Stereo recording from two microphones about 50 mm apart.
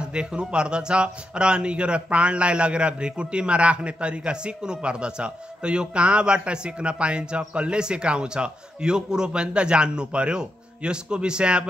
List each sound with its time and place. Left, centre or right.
0.0 s speech: right